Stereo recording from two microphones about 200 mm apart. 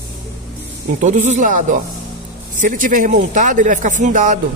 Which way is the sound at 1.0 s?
35° right (ahead or behind).